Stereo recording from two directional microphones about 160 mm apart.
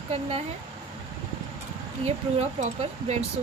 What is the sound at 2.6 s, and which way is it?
Speech, 40° right (ahead or behind).